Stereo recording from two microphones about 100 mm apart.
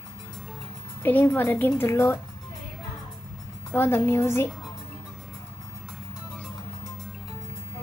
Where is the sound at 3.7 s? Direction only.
25° left (ahead or behind).